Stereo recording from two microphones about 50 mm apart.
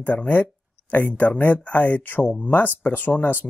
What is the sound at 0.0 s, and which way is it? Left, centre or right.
Speech, left.